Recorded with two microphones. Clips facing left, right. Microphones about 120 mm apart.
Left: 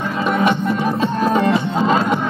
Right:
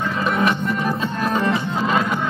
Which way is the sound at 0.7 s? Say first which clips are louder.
Left 4 dB; 25° left (ahead or behind).